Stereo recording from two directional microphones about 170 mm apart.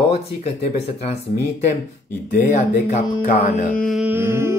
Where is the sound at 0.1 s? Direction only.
40° left (ahead or behind).